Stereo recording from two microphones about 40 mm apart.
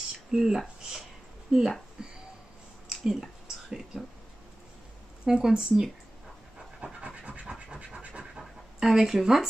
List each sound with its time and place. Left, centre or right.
0.3 s speech: centre
2.0 s a sound: centre
5.2 s speech: centre
7.4 s scratch: right
8.0 s scratch: right
8.8 s speech: centre